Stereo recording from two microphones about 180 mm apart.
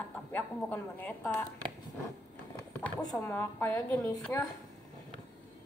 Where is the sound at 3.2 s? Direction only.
10° left (ahead or behind).